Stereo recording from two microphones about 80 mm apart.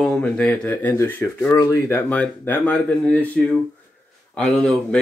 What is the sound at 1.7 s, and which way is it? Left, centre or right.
Speech, left.